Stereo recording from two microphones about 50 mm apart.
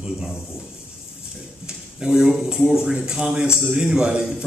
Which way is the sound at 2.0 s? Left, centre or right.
Centre.